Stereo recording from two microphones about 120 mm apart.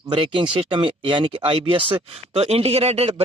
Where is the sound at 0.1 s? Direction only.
45° right (ahead or behind).